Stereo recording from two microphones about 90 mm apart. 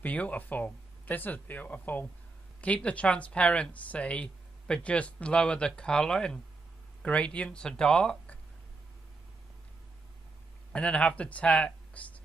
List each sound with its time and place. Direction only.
0.0 s speech: 15° left (ahead or behind)
10.7 s speech: 10° left (ahead or behind)